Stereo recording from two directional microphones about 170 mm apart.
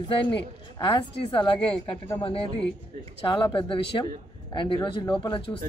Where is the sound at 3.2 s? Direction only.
30° left (ahead or behind).